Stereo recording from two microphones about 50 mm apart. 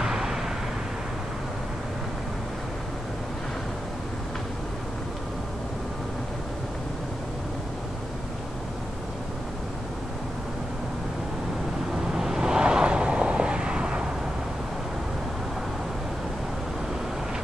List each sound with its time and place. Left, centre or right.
0.0 s vehicle: centre
12.1 s vehicle: centre